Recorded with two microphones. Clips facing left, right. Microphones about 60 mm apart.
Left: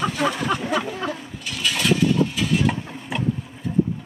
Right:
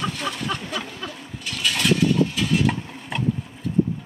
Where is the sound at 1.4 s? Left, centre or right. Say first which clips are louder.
Even; centre.